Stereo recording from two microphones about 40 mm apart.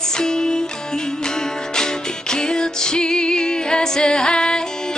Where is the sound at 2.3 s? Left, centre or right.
Centre.